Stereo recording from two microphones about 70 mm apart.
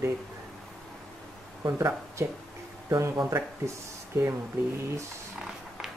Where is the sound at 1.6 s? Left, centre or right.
Right.